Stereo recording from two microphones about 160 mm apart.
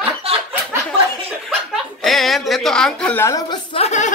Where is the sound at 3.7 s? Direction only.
45° left (ahead or behind).